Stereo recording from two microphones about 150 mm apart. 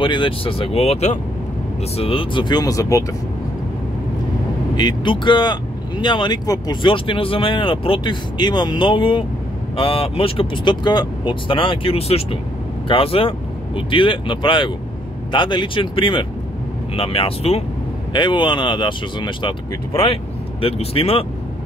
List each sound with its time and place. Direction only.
0.0 s speech: 35° left (ahead or behind)
4.7 s speech: 30° left (ahead or behind)
18.1 s speech: 30° left (ahead or behind)
20.6 s speech: 40° left (ahead or behind)